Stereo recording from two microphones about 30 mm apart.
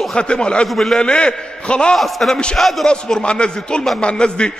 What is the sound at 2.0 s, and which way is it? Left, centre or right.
Speech, centre.